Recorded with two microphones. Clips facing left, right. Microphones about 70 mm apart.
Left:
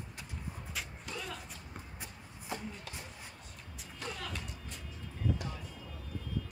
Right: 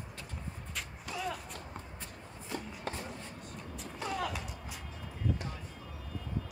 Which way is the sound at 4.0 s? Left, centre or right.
Centre.